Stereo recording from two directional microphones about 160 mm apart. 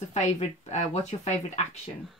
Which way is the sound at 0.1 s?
45° left (ahead or behind).